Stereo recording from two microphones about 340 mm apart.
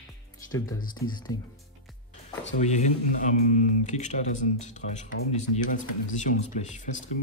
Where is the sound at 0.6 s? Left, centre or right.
Left.